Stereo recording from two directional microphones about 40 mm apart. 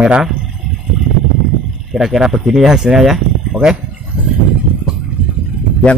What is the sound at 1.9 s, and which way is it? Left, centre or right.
Speech, centre.